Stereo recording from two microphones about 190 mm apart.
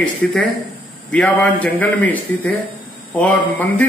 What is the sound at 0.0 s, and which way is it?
Speech, 5° left (ahead or behind).